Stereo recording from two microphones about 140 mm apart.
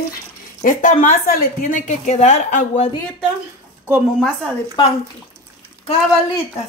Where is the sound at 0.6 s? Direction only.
65° left (ahead or behind).